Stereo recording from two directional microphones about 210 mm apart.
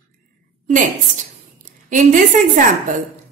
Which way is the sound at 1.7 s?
40° right (ahead or behind).